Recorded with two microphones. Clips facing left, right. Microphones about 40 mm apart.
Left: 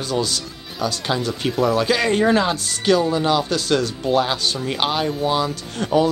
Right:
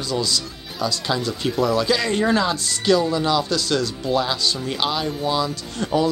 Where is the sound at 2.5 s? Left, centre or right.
Left.